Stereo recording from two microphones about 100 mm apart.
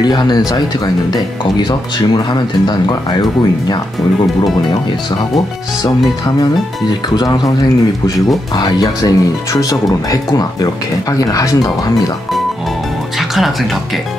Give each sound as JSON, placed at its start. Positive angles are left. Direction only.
{"t": 0.0, "sound": "speech", "side_deg": 45}
{"t": 7.2, "sound": "speech", "side_deg": 35}
{"t": 8.5, "sound": "speech", "side_deg": 40}